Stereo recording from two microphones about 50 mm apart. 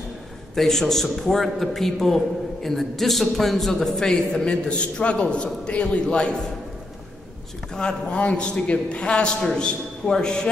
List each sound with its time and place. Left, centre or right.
0.6 s a man's voice: centre
7.7 s a man's voice: centre